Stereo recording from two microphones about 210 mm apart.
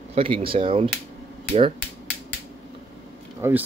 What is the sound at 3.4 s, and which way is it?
Speech, 10° right (ahead or behind).